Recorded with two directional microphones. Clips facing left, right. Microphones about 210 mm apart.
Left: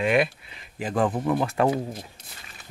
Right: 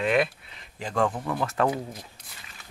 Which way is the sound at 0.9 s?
20° left (ahead or behind).